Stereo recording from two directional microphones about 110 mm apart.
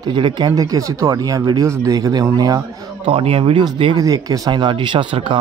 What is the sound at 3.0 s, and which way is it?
Speech, 60° right (ahead or behind).